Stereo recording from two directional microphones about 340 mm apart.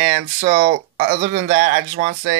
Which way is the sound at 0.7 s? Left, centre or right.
Right.